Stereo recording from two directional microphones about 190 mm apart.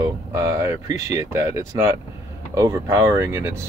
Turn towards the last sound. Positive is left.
turn(degrees=-15)  # may be behind; listen again after turning